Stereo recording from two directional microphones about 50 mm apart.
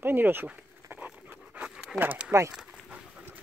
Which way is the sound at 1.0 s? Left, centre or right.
Right.